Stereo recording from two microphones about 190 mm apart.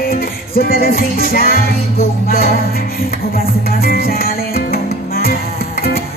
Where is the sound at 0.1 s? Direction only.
50° left (ahead or behind).